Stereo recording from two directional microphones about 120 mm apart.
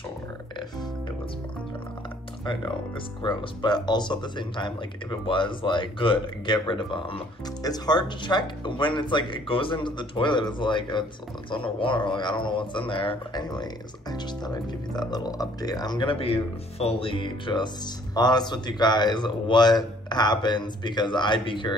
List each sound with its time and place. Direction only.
2.4 s speech: 45° left (ahead or behind)
13.3 s speech: 35° left (ahead or behind)
16.2 s speech: 55° left (ahead or behind)